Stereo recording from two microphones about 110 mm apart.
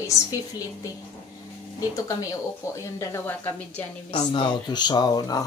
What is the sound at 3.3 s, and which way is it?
Speech, 15° left (ahead or behind).